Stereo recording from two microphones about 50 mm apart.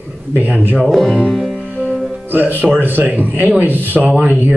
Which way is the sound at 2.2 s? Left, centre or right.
Right.